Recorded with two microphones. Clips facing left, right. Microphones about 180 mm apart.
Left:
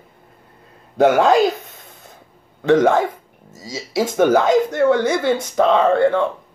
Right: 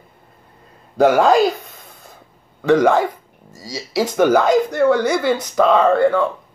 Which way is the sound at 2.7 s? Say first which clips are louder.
Even; 25° left (ahead or behind).